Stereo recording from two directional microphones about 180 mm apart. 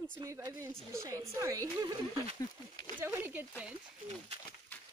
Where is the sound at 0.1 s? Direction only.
15° right (ahead or behind).